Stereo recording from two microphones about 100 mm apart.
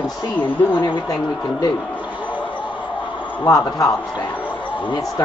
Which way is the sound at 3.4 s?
35° left (ahead or behind).